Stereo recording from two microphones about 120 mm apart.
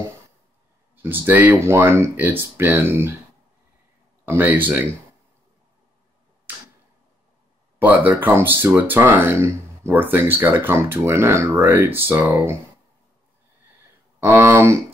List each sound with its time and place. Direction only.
1.0 s speech: 20° right (ahead or behind)
4.3 s speech: 15° right (ahead or behind)
7.8 s speech: 15° right (ahead or behind)
14.2 s speech: 20° right (ahead or behind)